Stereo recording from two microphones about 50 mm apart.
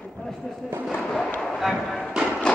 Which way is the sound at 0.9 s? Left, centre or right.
Centre.